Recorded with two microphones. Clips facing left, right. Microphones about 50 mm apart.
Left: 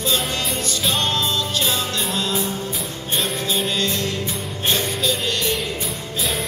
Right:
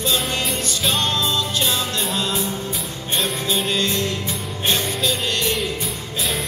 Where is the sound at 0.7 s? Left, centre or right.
Centre.